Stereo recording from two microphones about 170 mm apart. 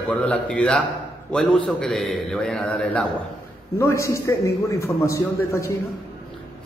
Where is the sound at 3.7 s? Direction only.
15° left (ahead or behind).